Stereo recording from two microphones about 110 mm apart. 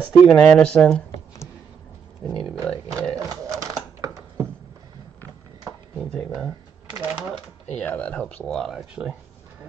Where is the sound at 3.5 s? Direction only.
35° right (ahead or behind).